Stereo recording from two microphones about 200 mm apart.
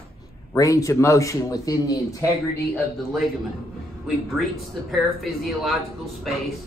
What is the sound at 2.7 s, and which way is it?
Speech, centre (ahead or behind).